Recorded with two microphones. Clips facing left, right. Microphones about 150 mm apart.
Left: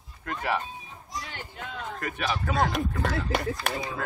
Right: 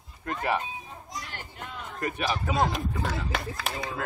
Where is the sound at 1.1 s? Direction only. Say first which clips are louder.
Left 3 dB; centre (ahead or behind).